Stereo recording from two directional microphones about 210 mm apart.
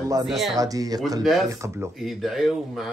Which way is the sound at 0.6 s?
15° right (ahead or behind).